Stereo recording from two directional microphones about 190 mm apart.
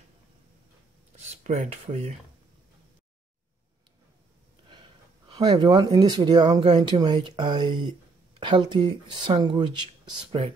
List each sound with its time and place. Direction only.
1.4 s speech: 40° right (ahead or behind)
5.3 s speech: 25° right (ahead or behind)